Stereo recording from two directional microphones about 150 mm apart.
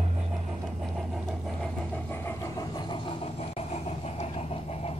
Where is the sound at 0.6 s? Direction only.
Centre (ahead or behind).